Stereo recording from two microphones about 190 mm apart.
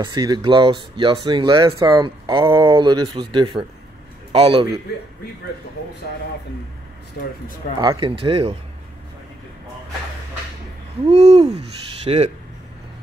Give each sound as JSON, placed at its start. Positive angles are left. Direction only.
{"t": 0.0, "sound": "a man's voice", "side_deg": -25}
{"t": 7.8, "sound": "speech", "side_deg": -25}
{"t": 11.1, "sound": "owl", "side_deg": -35}